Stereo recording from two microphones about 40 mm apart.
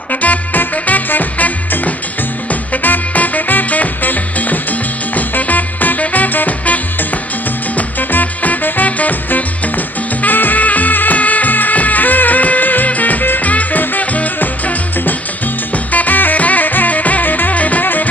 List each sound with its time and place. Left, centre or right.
0.2 s music: left
15.9 s music: left